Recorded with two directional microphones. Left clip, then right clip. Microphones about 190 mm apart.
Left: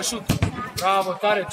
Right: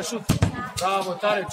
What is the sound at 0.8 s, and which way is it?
Speech, 30° right (ahead or behind).